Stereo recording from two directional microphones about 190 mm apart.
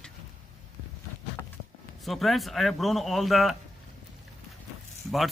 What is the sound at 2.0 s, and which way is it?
A man's voice, centre (ahead or behind).